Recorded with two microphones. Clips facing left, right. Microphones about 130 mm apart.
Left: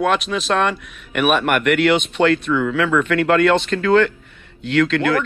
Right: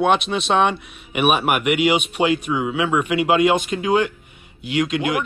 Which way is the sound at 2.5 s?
90° left.